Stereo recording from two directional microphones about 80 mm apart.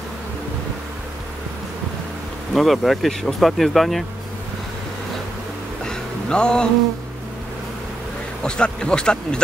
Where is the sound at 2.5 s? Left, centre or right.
Centre.